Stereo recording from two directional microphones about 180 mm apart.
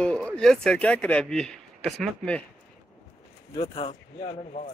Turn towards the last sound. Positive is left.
turn(degrees=30)  # may be behind; listen again after turning